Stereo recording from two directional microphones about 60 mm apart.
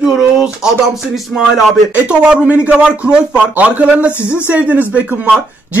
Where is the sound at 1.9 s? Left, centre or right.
Centre.